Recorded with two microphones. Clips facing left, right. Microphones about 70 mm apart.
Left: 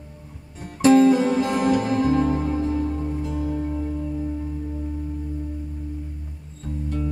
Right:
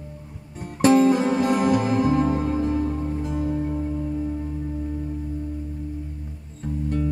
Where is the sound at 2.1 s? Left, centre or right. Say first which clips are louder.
Even; right.